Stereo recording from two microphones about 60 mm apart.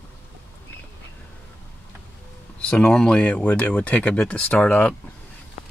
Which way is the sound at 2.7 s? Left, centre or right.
Centre.